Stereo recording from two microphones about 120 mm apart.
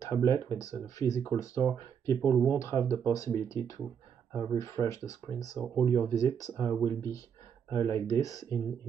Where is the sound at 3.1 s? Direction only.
25° left (ahead or behind).